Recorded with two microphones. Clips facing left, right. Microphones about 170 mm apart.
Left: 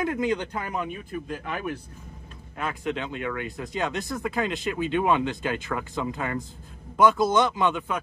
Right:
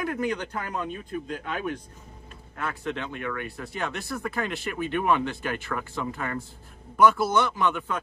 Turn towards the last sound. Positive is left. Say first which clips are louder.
# left 1 dB
turn(degrees=15)  # may be behind; listen again after turning